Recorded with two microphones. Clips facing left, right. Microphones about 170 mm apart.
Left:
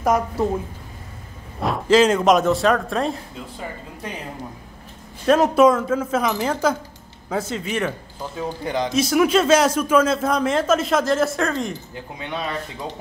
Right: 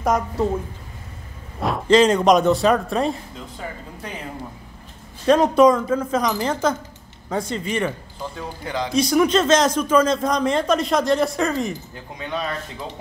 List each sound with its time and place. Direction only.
0.0 s speech: 5° left (ahead or behind)
1.6 s speech: centre (ahead or behind)
5.2 s speech: 5° left (ahead or behind)
8.4 s a man's voice: 20° left (ahead or behind)
8.9 s speech: 5° left (ahead or behind)